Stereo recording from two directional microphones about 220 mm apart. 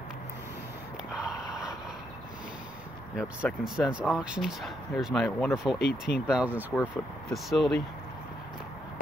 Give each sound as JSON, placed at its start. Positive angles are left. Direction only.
{"t": 1.4, "sound": "vehicle", "side_deg": -5}
{"t": 3.2, "sound": "speech", "side_deg": 0}
{"t": 5.8, "sound": "speech", "side_deg": 45}
{"t": 6.2, "sound": "speech", "side_deg": -5}